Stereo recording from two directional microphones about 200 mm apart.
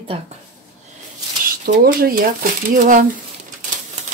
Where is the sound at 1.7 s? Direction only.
45° right (ahead or behind).